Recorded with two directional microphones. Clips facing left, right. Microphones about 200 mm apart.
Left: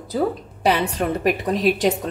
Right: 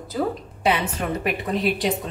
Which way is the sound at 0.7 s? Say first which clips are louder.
Left 3 dB; 40° left (ahead or behind).